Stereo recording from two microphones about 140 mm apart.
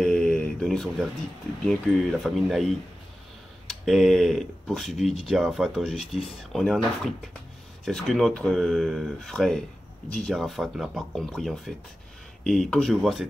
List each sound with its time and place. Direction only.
0.0 s a sound: 5° left (ahead or behind)
1.7 s speech: centre (ahead or behind)
7.8 s speech: centre (ahead or behind)